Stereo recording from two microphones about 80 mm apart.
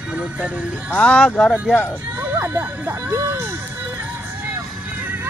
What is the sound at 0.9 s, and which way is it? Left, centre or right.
Speech, centre.